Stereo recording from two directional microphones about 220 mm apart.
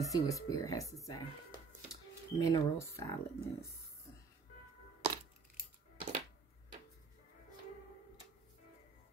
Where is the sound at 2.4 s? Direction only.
15° left (ahead or behind).